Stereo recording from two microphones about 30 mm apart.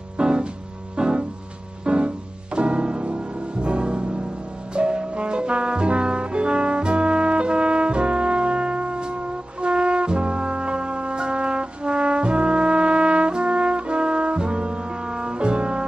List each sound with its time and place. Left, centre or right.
0.2 s music: right